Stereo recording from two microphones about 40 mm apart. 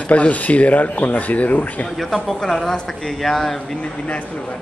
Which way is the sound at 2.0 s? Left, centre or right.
Centre.